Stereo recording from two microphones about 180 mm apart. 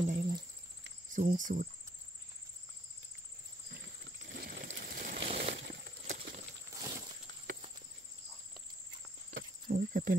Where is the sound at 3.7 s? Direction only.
65° right (ahead or behind).